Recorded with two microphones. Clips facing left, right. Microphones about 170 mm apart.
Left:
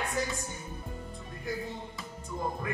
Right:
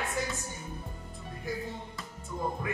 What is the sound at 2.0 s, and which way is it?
Music, centre (ahead or behind).